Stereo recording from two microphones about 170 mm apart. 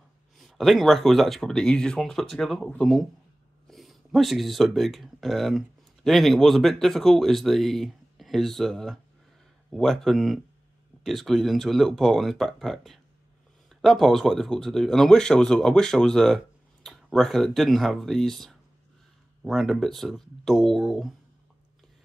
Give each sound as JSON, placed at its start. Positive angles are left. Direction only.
{"t": 0.4, "sound": "speech", "side_deg": 0}